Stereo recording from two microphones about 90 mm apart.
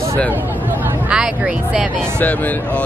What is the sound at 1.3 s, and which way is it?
Speech, 15° right (ahead or behind).